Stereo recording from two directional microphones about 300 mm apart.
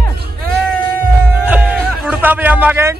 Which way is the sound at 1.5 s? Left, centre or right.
Centre.